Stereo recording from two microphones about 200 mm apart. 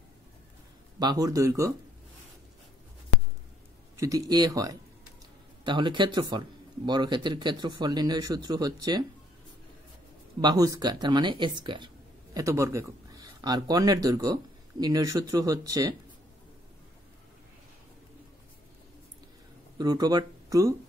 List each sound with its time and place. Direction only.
0.9 s speech: 20° right (ahead or behind)
3.9 s speech: 15° right (ahead or behind)
10.4 s speech: 20° right (ahead or behind)
19.8 s speech: 20° right (ahead or behind)